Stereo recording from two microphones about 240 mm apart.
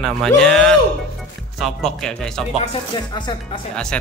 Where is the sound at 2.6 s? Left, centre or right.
Left.